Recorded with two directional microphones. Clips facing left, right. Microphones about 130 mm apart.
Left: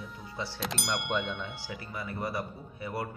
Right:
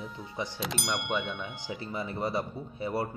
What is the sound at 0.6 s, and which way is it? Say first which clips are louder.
Speech: left 1 dB; centre (ahead or behind).